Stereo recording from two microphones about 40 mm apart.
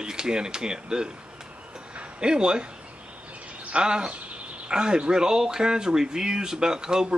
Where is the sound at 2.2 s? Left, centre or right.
Right.